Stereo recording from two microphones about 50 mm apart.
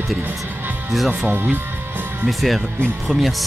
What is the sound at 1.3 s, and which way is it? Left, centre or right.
Music, right.